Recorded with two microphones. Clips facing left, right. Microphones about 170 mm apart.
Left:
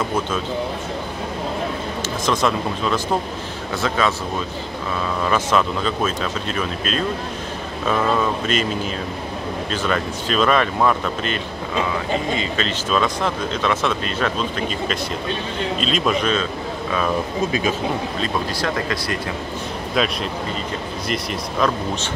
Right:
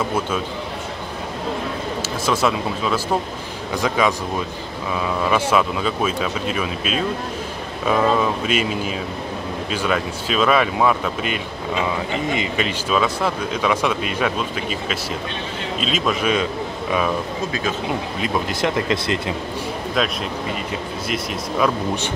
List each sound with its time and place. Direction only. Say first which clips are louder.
2.2 s speech: even; 5° right (ahead or behind)
5.2 s speech: right 1 dB; 10° right (ahead or behind)
9.7 s speech: right 1 dB; 5° right (ahead or behind)
12.4 s speech: right 1 dB; 15° right (ahead or behind)
15.8 s speech: even; 5° right (ahead or behind)
18.2 s speech: right 4 dB; 20° right (ahead or behind)
20.0 s speech: left 2 dB; centre (ahead or behind)